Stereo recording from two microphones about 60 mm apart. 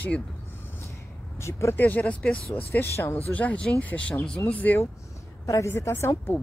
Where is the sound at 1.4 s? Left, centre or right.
Left.